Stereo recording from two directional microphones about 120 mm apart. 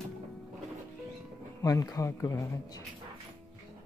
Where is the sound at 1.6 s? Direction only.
30° left (ahead or behind).